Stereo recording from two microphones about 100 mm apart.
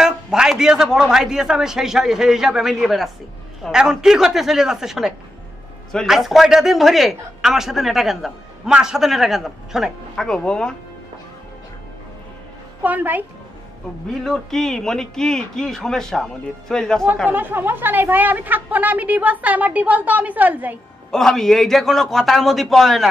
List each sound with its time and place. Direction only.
0.0 s a man's voice: 5° right (ahead or behind)
12.8 s a woman's voice: 15° right (ahead or behind)
14.2 s a man's voice: 5° left (ahead or behind)
17.3 s a woman's voice: 20° right (ahead or behind)
21.1 s a man's voice: 5° left (ahead or behind)